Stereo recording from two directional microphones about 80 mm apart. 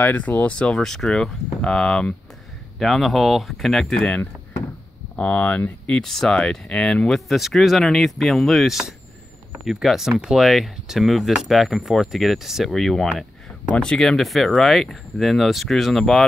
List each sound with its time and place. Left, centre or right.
0.0 s speech: left; by 4.1 s centre
5.1 s speech: centre
5.9 s speech: centre